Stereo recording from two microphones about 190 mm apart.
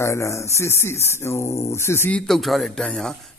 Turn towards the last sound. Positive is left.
turn(degrees=5)  # may be behind; listen again after turning